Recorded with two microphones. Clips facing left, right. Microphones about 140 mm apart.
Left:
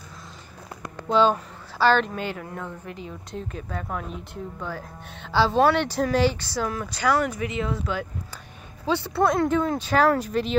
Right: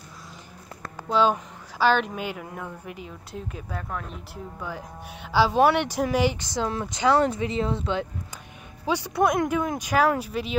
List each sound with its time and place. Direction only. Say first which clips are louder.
1.0 s speech: left 2 dB; 5° right (ahead or behind); by 8.1 s 25° right (ahead or behind)
8.8 s speech: left 1 dB; 15° right (ahead or behind)